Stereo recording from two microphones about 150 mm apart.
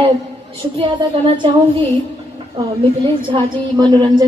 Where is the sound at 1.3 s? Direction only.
30° right (ahead or behind).